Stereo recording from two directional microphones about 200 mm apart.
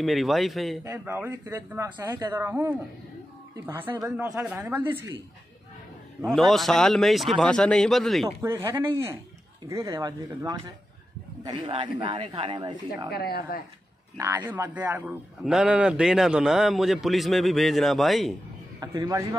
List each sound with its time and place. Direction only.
0.0 s a man's voice: centre (ahead or behind)
0.8 s speech: 10° right (ahead or behind)
6.2 s a man's voice: centre (ahead or behind)
8.4 s speech: 15° right (ahead or behind)
13.1 s speech: 50° left (ahead or behind)
14.1 s a man's voice: 15° right (ahead or behind)
18.8 s speech: 20° right (ahead or behind)